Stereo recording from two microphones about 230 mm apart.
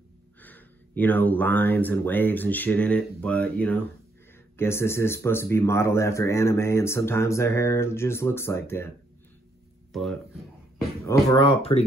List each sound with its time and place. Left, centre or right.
0.4 s speech: centre
9.9 s a sound: centre
11.1 s speech: centre